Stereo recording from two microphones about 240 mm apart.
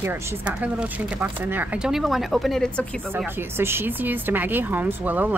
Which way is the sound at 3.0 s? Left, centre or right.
Centre.